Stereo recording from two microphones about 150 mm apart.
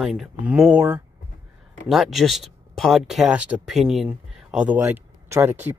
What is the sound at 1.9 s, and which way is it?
Speech, centre (ahead or behind).